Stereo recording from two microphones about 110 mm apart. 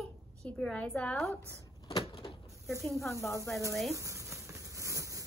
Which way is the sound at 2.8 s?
Centre (ahead or behind).